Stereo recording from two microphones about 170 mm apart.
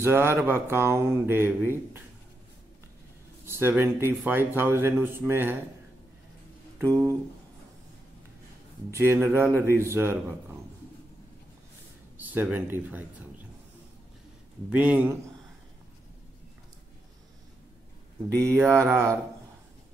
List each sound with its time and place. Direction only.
0.0 s speech: 15° right (ahead or behind)
3.4 s speech: 15° right (ahead or behind)
6.8 s speech: 15° right (ahead or behind)
8.9 s speech: 15° right (ahead or behind)
12.2 s speech: 10° right (ahead or behind)
14.7 s speech: 10° right (ahead or behind)
18.4 s speech: 15° right (ahead or behind)